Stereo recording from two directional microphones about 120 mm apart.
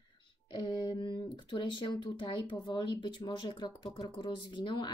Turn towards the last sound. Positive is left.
turn(degrees=40)  # may be behind; listen again after turning